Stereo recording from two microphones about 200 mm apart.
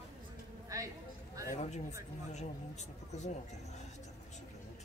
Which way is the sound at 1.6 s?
35° left (ahead or behind).